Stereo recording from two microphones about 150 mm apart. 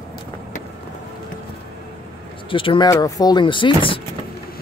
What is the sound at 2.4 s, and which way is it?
Speech, 35° left (ahead or behind).